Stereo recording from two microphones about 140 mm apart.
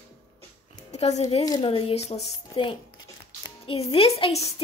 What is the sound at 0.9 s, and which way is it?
Speech, 50° left (ahead or behind).